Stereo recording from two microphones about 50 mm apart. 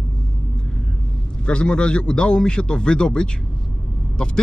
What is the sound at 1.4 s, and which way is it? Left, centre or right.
Speech, centre.